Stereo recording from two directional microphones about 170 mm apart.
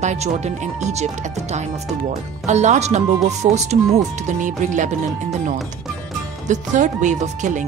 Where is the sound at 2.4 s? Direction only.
40° right (ahead or behind).